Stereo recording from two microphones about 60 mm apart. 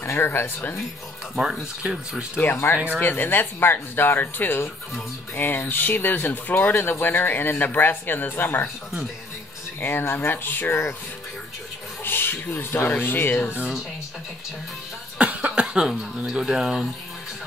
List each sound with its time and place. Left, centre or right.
0.0 s speech: left
1.3 s speech: centre
2.5 s speech: left
9.8 s speech: left
12.0 s speech: left
13.5 s speech: right
15.1 s cough: right
15.6 s speech: centre